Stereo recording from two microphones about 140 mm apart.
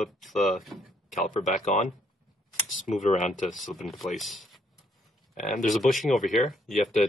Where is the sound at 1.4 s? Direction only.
60° left (ahead or behind).